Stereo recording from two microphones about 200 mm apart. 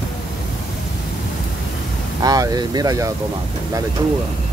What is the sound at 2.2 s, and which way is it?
Speech, 20° right (ahead or behind).